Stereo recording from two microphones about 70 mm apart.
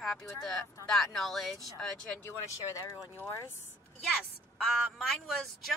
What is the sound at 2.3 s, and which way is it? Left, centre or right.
Speech, left.